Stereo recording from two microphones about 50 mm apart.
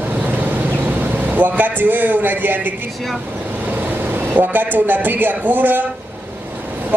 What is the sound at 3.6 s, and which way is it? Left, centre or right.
A man's voice, right.